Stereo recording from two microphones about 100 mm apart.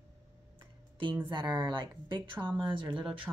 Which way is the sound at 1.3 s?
45° right (ahead or behind).